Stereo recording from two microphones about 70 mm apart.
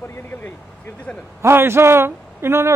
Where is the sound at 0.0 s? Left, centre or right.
Left.